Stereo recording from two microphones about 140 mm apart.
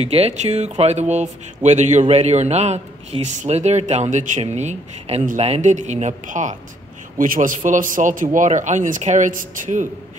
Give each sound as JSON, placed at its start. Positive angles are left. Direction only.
{"t": 0.0, "sound": "a man's voice", "side_deg": -45}